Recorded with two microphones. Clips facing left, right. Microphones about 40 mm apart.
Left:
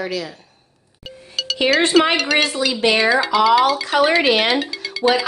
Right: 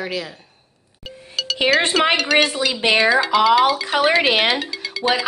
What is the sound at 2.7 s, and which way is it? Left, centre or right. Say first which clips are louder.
Speech: left 1 dB; centre.